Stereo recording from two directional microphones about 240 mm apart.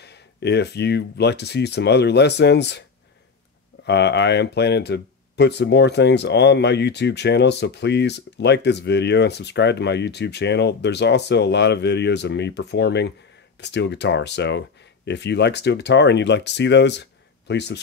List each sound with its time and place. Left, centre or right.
0.0 s speech: left
3.8 s speech: left